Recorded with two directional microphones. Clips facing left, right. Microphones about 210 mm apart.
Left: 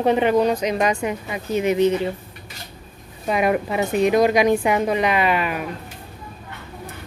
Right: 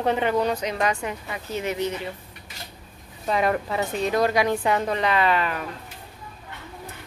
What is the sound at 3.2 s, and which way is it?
A woman's voice, 15° left (ahead or behind).